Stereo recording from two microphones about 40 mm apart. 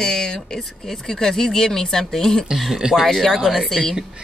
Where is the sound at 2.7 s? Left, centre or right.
Centre.